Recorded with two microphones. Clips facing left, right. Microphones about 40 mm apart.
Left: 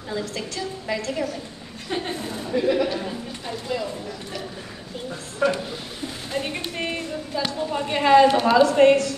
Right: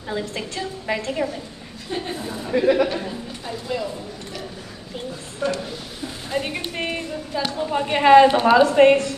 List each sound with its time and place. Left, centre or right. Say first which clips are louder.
0.1 s a woman's voice: right 2 dB; right
3.0 s speech: even; centre
5.4 s a sound: left 3 dB; left
6.3 s music: right 3 dB; centre
7.5 s a woman's voice: right 5 dB; right